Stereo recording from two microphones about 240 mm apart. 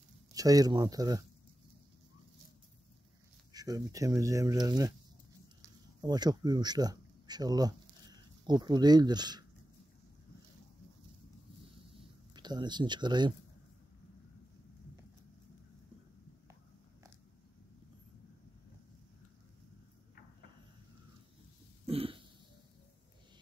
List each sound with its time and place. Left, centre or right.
0.3 s speech: centre
3.5 s speech: centre
5.9 s speech: centre
12.4 s speech: centre
21.8 s throat clearing: right